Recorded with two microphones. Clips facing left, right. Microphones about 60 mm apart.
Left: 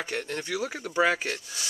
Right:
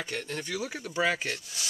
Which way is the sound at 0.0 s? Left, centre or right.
Left.